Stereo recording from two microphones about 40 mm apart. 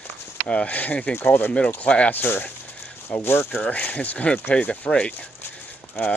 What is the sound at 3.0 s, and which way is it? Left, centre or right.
Speech, left.